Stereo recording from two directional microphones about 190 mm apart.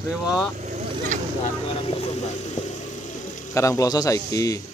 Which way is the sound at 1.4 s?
30° left (ahead or behind).